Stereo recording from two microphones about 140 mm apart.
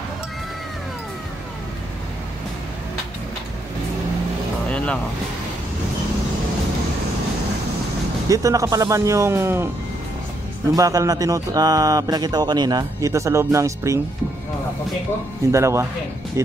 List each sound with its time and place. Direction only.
4.6 s vehicle: 10° left (ahead or behind)
8.3 s speech: 25° right (ahead or behind)
10.7 s speech: 25° right (ahead or behind)
15.5 s speech: 20° right (ahead or behind)